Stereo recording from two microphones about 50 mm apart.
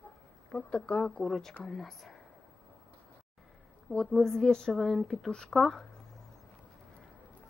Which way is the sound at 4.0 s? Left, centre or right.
Centre.